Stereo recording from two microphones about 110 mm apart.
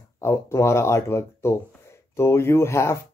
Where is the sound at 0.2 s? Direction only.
25° left (ahead or behind).